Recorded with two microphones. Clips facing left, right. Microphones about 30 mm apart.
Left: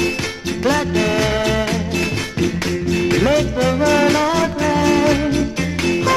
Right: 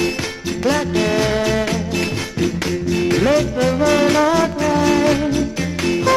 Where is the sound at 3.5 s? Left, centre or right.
Left.